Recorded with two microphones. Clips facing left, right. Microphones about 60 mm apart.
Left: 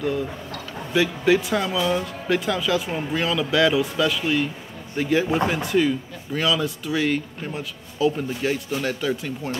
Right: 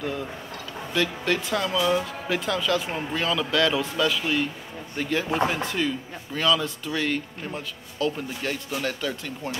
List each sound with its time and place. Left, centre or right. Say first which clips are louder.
0.9 s speech: left 6 dB; centre